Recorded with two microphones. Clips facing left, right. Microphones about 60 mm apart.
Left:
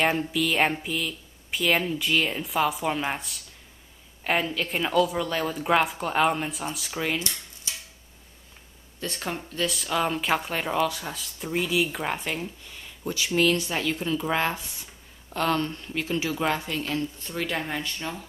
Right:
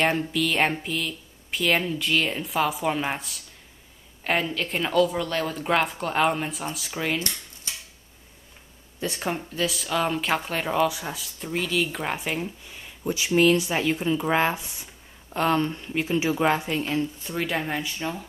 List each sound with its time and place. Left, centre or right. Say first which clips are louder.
0.0 s speech: right 1 dB; centre
9.0 s speech: right 3 dB; centre
9.7 s speech: even; centre